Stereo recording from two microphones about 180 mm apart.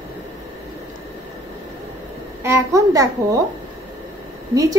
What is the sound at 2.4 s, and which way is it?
A child's voice, 15° right (ahead or behind).